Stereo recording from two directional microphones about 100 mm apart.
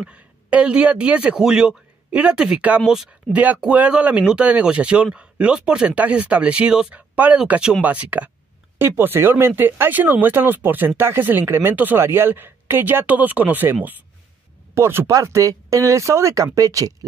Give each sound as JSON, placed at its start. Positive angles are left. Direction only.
{"t": 0.0, "sound": "speech", "side_deg": -10}
{"t": 3.3, "sound": "speech", "side_deg": -15}